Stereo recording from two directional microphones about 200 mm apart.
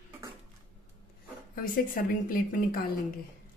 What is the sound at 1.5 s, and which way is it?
A woman's voice, 45° left (ahead or behind).